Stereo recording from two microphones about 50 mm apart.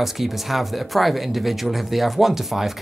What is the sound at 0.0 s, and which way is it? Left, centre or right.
Speech, centre.